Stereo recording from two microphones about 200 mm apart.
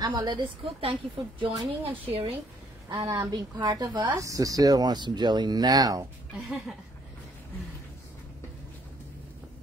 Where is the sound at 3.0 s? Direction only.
15° right (ahead or behind).